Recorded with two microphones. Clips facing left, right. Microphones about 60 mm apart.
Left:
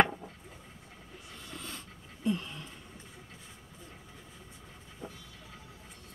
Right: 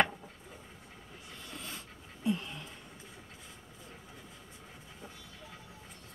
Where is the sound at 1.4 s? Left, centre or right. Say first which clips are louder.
Left 1 dB; centre.